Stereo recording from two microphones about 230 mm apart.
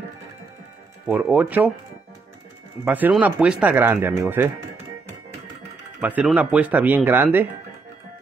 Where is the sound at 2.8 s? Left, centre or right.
Centre.